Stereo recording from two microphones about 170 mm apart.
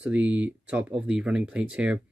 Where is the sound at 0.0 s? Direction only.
10° right (ahead or behind).